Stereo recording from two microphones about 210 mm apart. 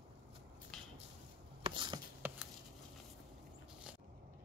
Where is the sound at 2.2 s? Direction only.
10° right (ahead or behind).